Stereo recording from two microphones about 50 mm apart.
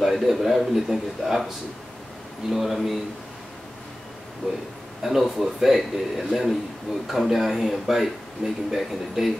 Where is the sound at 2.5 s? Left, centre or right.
Centre.